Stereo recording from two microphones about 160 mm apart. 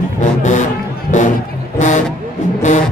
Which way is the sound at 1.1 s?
50° left (ahead or behind).